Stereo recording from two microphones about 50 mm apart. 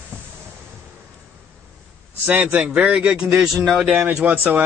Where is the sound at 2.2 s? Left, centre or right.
Right.